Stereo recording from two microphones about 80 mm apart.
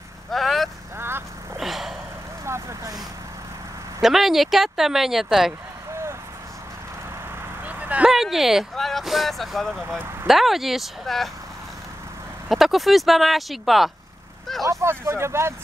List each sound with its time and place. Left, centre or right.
0.3 s vehicle: centre
0.9 s vehicle: right
1.6 s a sound: centre
2.4 s vehicle: right
4.0 s speech: centre
7.6 s vehicle: centre
8.1 s speech: centre
12.4 s speech: centre
14.6 s speech: right